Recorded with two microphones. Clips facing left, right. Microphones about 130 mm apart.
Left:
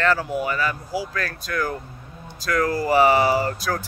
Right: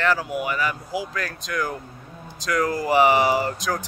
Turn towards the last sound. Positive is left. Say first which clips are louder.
# left 1 dB
turn(degrees=-15)  # may be behind; listen again after turning